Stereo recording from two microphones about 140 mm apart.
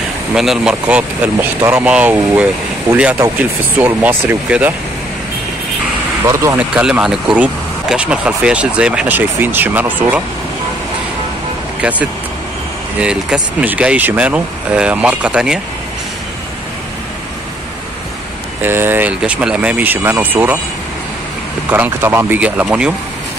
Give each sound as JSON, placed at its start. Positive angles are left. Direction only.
{"t": 0.3, "sound": "speech", "side_deg": -5}
{"t": 6.2, "sound": "speech", "side_deg": -20}
{"t": 6.7, "sound": "speech", "side_deg": -5}
{"t": 13.0, "sound": "speech", "side_deg": -5}
{"t": 18.6, "sound": "speech", "side_deg": -15}
{"t": 21.6, "sound": "speech", "side_deg": -15}